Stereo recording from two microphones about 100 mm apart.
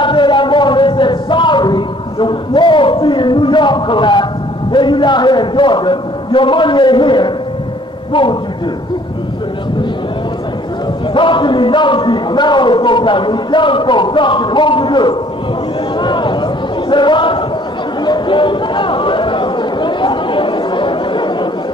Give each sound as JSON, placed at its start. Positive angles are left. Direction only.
{"t": 0.0, "sound": "a sound", "side_deg": 55}
{"t": 4.7, "sound": "a man's voice", "side_deg": 55}
{"t": 11.1, "sound": "a man's voice", "side_deg": 55}
{"t": 16.0, "sound": "a sound", "side_deg": 50}
{"t": 16.9, "sound": "a man's voice", "side_deg": 50}
{"t": 18.0, "sound": "chatter", "side_deg": 50}